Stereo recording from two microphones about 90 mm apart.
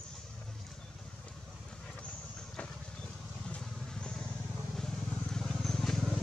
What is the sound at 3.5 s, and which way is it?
Vehicle, 10° left (ahead or behind).